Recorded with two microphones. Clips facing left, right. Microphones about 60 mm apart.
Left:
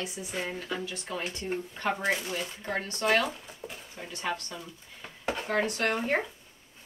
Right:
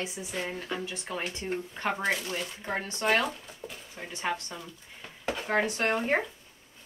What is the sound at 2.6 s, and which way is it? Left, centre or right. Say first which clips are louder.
Speech: even; centre.